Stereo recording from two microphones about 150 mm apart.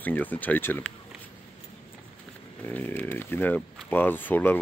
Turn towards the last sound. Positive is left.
turn(degrees=15)  # may be behind; listen again after turning